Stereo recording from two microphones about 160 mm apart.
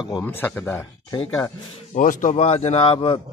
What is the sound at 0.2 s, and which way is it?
Speech, 10° left (ahead or behind).